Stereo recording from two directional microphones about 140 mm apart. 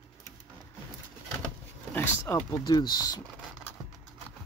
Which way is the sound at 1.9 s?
20° left (ahead or behind).